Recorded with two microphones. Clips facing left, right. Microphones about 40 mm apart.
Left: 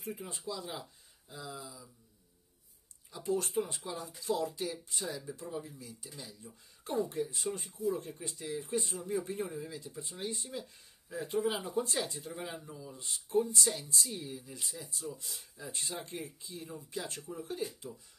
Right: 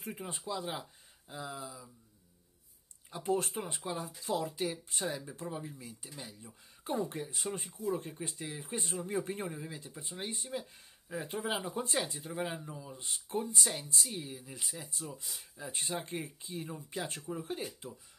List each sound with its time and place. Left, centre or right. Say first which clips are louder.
0.0 s speech: even; right
3.1 s speech: right 1 dB; right
5.5 s speech: even; right
7.0 s speech: left 3 dB; right
8.8 s speech: even; right
9.5 s speech: left 1 dB; right
12.1 s speech: even; centre
12.4 s speech: right 4 dB; right